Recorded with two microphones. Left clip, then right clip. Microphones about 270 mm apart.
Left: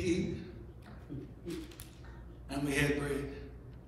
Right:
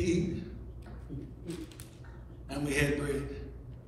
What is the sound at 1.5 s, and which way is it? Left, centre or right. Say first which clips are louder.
Speech: even; right.